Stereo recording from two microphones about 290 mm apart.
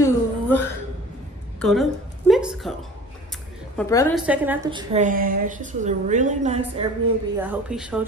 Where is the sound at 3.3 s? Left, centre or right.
Centre.